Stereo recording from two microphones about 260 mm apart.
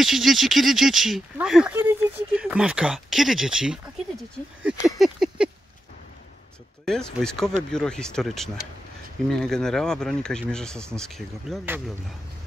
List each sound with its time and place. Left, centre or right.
0.0 s speech: centre
4.6 s a sound: centre
6.9 s speech: centre